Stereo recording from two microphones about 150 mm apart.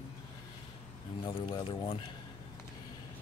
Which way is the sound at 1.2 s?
30° left (ahead or behind).